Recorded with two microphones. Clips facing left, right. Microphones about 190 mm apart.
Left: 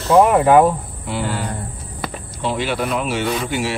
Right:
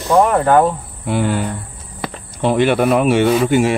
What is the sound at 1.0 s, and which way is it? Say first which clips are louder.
Speech: right 6 dB; 55° right (ahead or behind).